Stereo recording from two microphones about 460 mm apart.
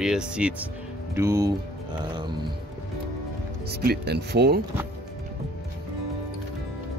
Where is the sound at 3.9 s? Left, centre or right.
Right.